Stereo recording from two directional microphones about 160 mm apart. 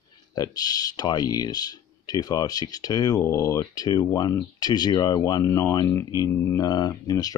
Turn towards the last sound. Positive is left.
turn(degrees=25)  # may be behind; listen again after turning